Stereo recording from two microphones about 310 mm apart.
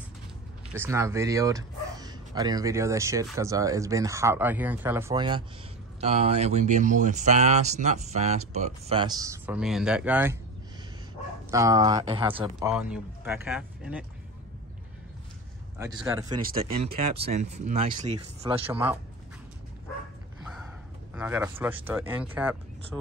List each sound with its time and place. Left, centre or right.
0.7 s speech: centre
11.5 s speech: centre
15.8 s speech: centre
18.7 s speech: centre
21.1 s speech: centre